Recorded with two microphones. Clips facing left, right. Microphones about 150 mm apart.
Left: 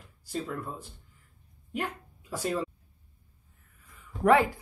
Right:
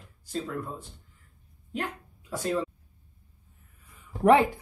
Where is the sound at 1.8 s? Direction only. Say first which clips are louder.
Even; 5° left (ahead or behind).